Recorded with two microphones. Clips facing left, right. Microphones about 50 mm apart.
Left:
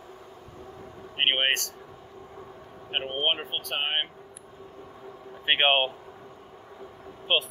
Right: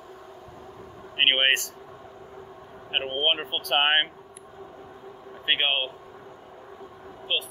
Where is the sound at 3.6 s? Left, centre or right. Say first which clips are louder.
Right 8 dB; right.